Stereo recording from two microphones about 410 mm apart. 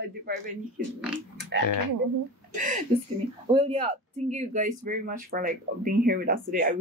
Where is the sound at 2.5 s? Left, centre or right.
Centre.